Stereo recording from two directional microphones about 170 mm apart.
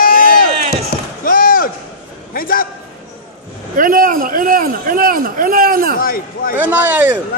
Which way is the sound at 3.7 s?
55° right (ahead or behind).